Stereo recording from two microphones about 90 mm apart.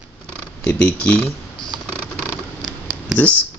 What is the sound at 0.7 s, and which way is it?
Speech, 15° left (ahead or behind).